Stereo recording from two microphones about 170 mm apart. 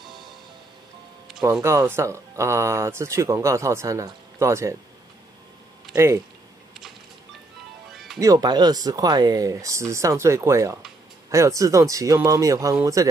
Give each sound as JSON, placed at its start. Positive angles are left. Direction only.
{"t": 1.4, "sound": "speech", "side_deg": -15}
{"t": 5.9, "sound": "speech", "side_deg": -15}
{"t": 7.9, "sound": "music", "side_deg": 0}
{"t": 8.2, "sound": "speech", "side_deg": -20}